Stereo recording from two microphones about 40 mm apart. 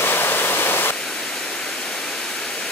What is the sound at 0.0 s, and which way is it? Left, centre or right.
Waterfall, left.